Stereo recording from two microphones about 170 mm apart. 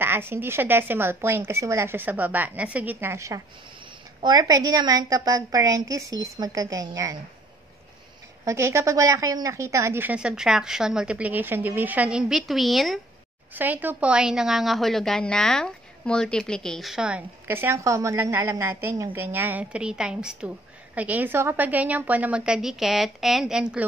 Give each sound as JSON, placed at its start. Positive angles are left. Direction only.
{"t": 0.0, "sound": "a woman's voice", "side_deg": -15}
{"t": 8.5, "sound": "a woman's voice", "side_deg": -15}
{"t": 13.5, "sound": "a woman's voice", "side_deg": -10}